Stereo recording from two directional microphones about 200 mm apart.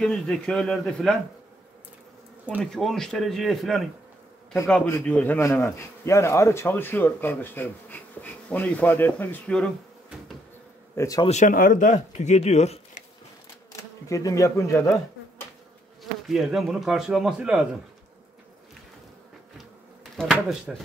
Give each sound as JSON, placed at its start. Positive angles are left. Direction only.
{"t": 0.0, "sound": "speech", "side_deg": 5}
{"t": 2.6, "sound": "speech", "side_deg": 0}
{"t": 4.8, "sound": "a man's voice", "side_deg": 10}
{"t": 11.0, "sound": "a man's voice", "side_deg": 15}
{"t": 11.2, "sound": "speech", "side_deg": 40}
{"t": 13.7, "sound": "speech", "side_deg": 15}
{"t": 16.0, "sound": "speech", "side_deg": 0}
{"t": 20.2, "sound": "speech", "side_deg": 0}